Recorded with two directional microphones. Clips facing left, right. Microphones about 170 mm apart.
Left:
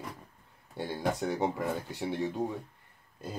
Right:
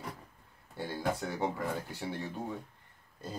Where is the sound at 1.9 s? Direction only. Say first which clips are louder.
Left 6 dB; 20° left (ahead or behind).